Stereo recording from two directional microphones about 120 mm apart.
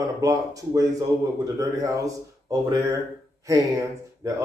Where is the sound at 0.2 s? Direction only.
30° right (ahead or behind).